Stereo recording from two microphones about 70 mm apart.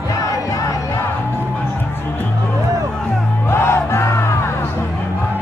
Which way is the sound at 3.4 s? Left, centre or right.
Left.